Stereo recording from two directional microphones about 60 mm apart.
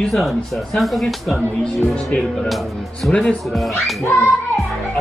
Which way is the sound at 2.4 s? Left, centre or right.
Centre.